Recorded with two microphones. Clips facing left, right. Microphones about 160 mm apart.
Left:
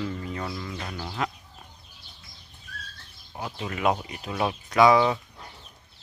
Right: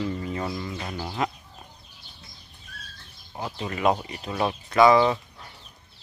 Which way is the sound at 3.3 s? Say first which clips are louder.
Right 2 dB; centre (ahead or behind).